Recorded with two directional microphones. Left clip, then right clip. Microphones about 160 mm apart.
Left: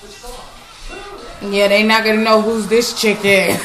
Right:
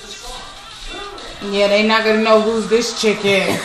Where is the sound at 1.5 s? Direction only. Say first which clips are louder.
Left 2 dB; 5° left (ahead or behind).